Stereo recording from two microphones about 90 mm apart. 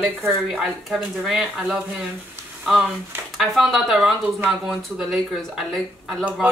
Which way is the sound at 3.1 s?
25° right (ahead or behind).